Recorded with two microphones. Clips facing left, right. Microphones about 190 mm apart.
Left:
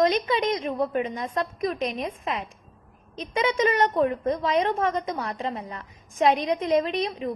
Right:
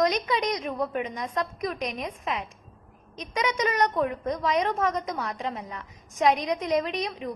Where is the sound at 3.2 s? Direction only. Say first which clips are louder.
Left 4 dB; 30° left (ahead or behind).